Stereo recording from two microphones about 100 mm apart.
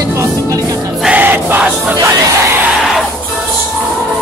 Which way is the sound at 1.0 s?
15° right (ahead or behind).